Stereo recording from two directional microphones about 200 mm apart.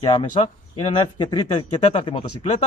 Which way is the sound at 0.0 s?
25° left (ahead or behind).